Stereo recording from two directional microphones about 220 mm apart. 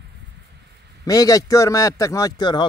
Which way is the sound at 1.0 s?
15° left (ahead or behind).